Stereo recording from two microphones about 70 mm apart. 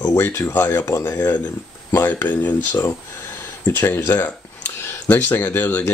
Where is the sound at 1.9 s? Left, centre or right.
Left.